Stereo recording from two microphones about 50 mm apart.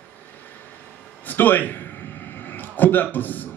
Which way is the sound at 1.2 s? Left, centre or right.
Left.